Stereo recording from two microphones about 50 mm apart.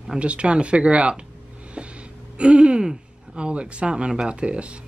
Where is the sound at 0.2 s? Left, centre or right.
Right.